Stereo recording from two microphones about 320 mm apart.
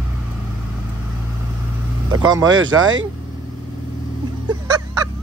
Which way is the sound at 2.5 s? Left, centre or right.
Right.